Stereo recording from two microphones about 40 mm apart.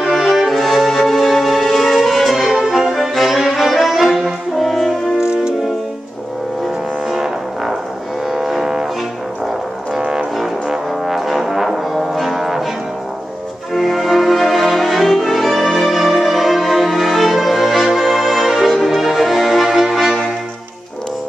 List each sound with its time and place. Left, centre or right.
0.0 s music: centre
4.6 s french horn: centre
5.2 s music: right
7.1 s music: centre
9.9 s brass instrument: centre
13.7 s music: centre